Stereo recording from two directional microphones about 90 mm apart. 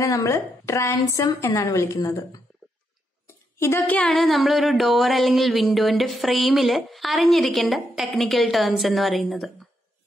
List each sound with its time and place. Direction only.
0.0 s a woman's voice: 35° left (ahead or behind)
3.3 s a sound: 30° left (ahead or behind)
3.8 s a woman's voice: 15° left (ahead or behind)
4.1 s speech: centre (ahead or behind)